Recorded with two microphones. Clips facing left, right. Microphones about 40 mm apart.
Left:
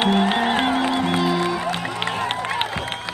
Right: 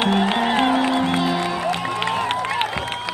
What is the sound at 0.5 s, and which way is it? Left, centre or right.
Music, right.